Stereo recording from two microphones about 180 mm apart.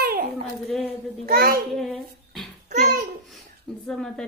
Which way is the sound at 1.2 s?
55° right (ahead or behind).